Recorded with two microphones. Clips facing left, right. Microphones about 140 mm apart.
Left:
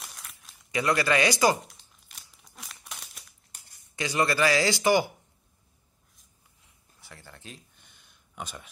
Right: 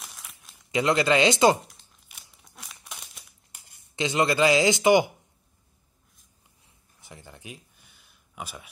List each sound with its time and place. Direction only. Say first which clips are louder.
0.0 s crumpling: even; centre (ahead or behind)
0.7 s speech: right 3 dB; 20° right (ahead or behind)
1.6 s crumpling: even; centre (ahead or behind)
3.9 s speech: right 3 dB; 20° right (ahead or behind)
7.0 s a sound: right 3 dB; 20° right (ahead or behind)